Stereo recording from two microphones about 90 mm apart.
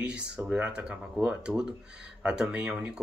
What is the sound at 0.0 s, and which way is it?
Speech, 10° right (ahead or behind).